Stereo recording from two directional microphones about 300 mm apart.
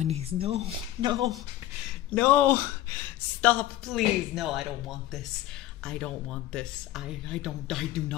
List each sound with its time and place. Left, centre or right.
0.0 s speech: centre
2.0 s speech: centre
5.9 s speech: centre